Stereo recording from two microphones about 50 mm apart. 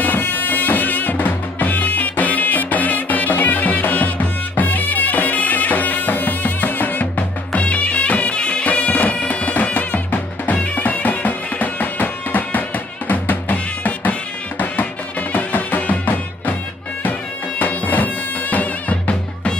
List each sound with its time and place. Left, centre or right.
0.0 s music: left
17.6 s bagpipes: left